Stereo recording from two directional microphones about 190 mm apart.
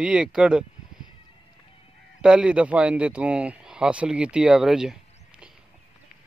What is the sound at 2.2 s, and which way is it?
Speech, 5° right (ahead or behind).